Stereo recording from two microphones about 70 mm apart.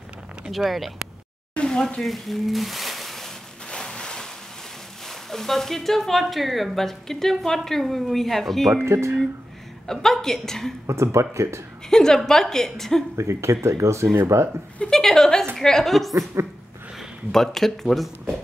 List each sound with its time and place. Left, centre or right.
0.5 s speech: centre
1.5 s speech: centre
3.7 s a sound: centre
5.0 s speech: centre
8.8 s speech: right
9.8 s speech: centre
10.9 s speech: right
11.9 s a woman's voice: centre
13.2 s speech: right
14.8 s a sound: centre
15.5 s a woman's voice: centre
17.3 s speech: centre